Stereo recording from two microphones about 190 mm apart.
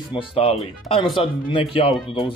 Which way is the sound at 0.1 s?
30° left (ahead or behind).